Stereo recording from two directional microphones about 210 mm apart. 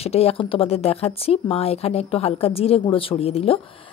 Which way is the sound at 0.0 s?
30° left (ahead or behind).